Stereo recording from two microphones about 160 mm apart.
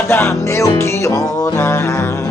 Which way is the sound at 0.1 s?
15° left (ahead or behind).